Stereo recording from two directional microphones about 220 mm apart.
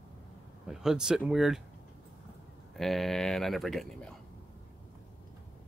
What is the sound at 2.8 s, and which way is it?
Speech, centre (ahead or behind).